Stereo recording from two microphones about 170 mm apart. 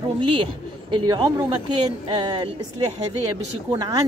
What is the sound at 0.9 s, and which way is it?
A woman's voice, 30° right (ahead or behind).